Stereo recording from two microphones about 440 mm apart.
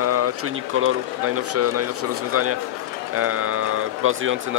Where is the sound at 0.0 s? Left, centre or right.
Right.